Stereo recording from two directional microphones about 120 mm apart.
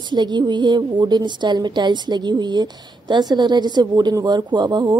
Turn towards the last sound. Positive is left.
turn(degrees=-35)  # may be behind; listen again after turning